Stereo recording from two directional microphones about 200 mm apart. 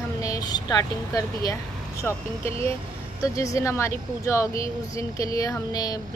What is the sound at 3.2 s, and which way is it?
Speech, 15° left (ahead or behind).